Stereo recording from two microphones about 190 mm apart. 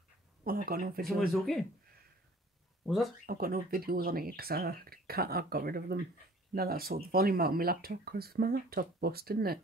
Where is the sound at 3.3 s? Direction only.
50° right (ahead or behind).